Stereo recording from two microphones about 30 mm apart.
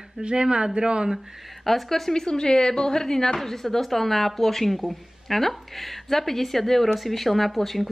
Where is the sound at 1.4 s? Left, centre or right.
Centre.